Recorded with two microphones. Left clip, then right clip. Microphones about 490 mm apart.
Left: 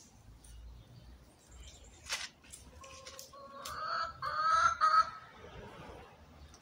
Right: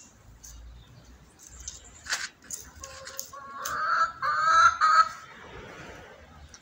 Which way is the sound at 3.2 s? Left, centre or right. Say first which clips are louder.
Right 11 dB; left.